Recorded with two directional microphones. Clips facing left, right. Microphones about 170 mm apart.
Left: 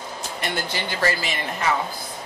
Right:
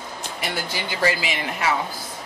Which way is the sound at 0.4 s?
10° right (ahead or behind).